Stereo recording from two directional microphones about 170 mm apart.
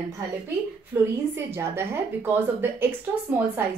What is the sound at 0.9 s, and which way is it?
A woman's voice, 15° right (ahead or behind).